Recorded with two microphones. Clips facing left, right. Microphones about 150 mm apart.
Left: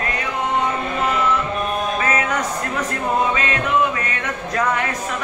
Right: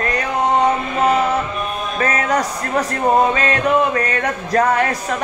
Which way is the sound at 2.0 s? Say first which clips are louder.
Right 3 dB; 40° right (ahead or behind).